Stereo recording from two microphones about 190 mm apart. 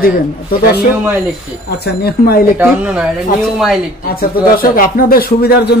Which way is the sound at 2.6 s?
5° right (ahead or behind).